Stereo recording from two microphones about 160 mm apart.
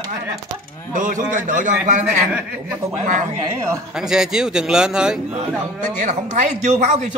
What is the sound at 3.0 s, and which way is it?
Speech, 50° right (ahead or behind).